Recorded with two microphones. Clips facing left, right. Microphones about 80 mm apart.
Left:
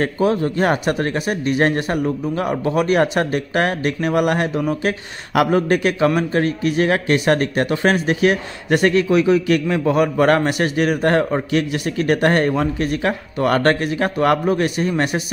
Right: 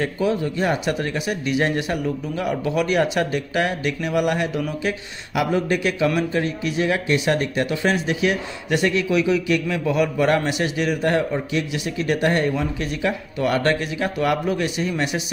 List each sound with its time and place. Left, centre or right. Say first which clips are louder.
0.0 s a man's voice: left 4 dB; left